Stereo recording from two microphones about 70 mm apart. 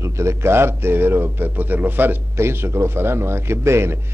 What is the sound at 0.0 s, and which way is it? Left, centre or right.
A man's voice, right.